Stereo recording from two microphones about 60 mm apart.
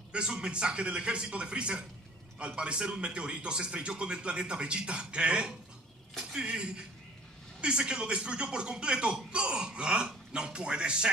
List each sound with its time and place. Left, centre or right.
0.1 s speech: centre